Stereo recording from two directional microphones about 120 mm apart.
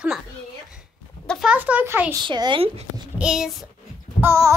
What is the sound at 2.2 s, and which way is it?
Speech, 40° right (ahead or behind).